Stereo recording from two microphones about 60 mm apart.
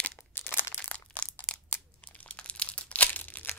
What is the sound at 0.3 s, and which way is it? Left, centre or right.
Crunch, left.